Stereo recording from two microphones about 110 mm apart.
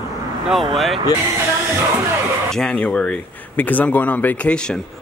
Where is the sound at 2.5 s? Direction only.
10° left (ahead or behind).